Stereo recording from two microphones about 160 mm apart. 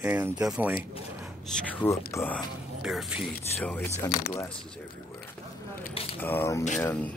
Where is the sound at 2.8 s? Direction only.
5° right (ahead or behind).